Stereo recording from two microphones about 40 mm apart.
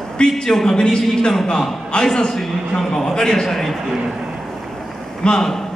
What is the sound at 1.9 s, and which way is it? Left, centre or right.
A man's voice, left.